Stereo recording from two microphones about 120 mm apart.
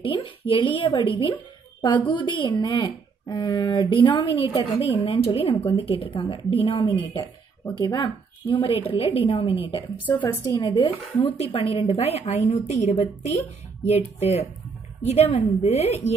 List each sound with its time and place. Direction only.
0.0 s speech: 45° left (ahead or behind)
4.7 s speech: 55° left (ahead or behind)
10.0 s a woman's voice: 15° left (ahead or behind)
10.5 s speech: 30° left (ahead or behind)
11.1 s a woman's voice: 50° left (ahead or behind); by 16.0 s 65° left (ahead or behind)